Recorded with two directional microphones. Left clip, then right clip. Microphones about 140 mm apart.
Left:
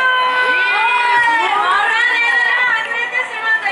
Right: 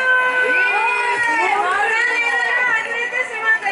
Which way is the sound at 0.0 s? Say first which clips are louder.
Left 2 dB; 20° left (ahead or behind).